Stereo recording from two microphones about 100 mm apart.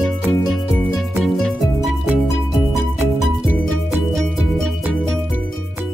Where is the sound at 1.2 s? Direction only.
5° left (ahead or behind).